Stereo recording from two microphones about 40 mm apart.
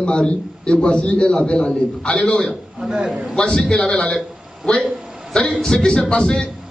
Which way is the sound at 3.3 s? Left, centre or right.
Centre.